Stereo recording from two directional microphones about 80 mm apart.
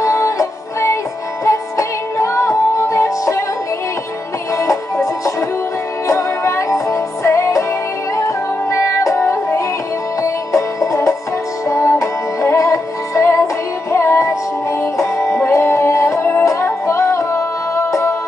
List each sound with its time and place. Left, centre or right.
0.0 s music: left
4.6 s music: left